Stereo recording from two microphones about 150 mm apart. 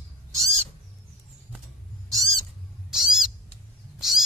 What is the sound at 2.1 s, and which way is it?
Cat, 25° right (ahead or behind).